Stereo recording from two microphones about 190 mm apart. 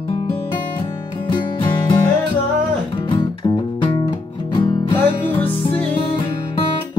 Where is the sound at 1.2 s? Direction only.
25° left (ahead or behind).